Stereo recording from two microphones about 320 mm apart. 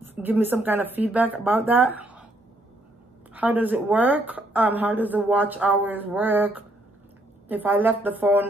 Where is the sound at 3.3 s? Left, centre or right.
Centre.